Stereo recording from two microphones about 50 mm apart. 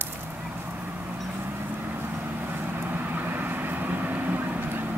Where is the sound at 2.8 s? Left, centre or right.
Right.